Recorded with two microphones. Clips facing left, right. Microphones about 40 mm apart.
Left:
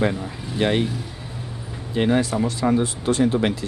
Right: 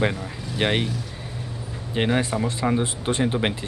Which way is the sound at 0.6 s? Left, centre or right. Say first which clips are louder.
Left 2 dB; right.